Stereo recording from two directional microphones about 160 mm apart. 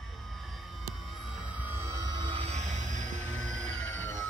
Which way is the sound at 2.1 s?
30° right (ahead or behind).